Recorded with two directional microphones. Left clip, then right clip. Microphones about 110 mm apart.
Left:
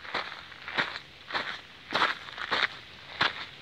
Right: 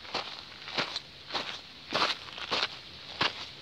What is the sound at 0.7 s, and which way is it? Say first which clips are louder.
Walk: left 2 dB; 5° right (ahead or behind).